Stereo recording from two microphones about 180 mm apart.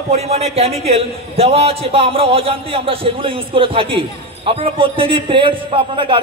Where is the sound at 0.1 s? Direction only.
35° right (ahead or behind).